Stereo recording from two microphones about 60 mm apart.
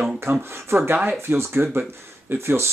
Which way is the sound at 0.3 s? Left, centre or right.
Right.